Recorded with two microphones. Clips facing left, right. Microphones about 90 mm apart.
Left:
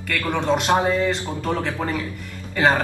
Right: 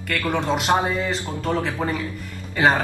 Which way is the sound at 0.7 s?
15° right (ahead or behind).